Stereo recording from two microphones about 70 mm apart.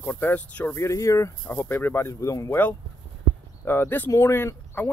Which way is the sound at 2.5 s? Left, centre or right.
Left.